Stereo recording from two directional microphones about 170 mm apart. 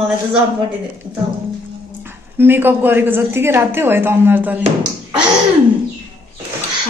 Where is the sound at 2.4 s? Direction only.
10° right (ahead or behind).